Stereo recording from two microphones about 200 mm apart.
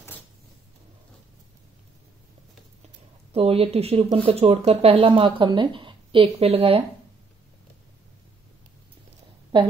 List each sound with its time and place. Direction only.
3.3 s speech: 30° right (ahead or behind)